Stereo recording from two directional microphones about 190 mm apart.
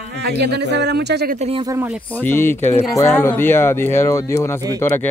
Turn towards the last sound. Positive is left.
turn(degrees=10)  # may be behind; listen again after turning